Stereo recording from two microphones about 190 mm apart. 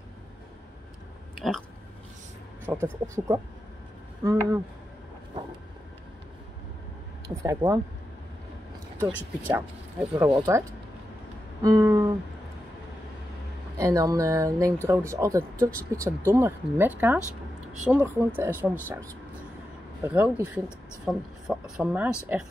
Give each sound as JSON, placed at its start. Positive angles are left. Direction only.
{"t": 1.3, "sound": "a sound", "side_deg": 0}
{"t": 2.6, "sound": "speech", "side_deg": -10}
{"t": 7.2, "sound": "speech", "side_deg": -15}
{"t": 9.5, "sound": "speech", "side_deg": -10}
{"t": 10.1, "sound": "speech", "side_deg": -20}
{"t": 11.6, "sound": "speech", "side_deg": -20}
{"t": 13.7, "sound": "speech", "side_deg": -15}